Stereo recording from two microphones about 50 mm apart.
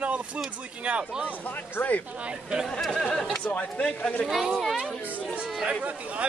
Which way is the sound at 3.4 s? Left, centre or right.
Left.